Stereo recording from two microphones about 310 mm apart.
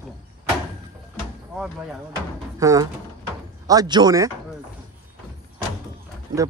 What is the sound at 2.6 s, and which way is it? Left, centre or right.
Speech, centre.